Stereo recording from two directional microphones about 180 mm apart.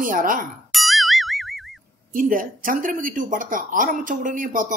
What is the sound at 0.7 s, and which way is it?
Boing, centre (ahead or behind).